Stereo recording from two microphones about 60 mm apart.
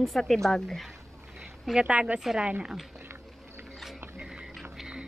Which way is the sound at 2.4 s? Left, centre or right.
Centre.